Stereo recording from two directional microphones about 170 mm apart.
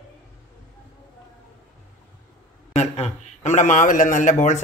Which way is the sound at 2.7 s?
40° left (ahead or behind).